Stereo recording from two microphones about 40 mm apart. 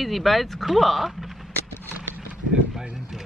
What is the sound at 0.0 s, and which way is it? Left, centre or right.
Speech, centre.